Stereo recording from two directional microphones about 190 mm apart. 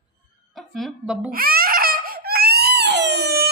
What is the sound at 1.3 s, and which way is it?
Baby cry, 50° right (ahead or behind).